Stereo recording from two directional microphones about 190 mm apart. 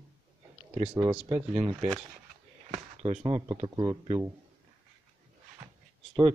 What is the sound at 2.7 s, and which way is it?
Speech, 35° right (ahead or behind).